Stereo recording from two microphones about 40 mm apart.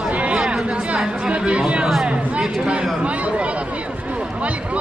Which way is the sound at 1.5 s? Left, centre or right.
Right.